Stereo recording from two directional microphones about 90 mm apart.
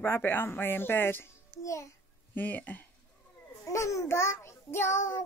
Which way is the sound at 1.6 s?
35° left (ahead or behind).